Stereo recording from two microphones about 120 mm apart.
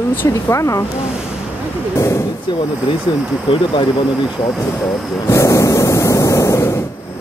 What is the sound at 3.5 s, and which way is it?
Speech, 50° left (ahead or behind).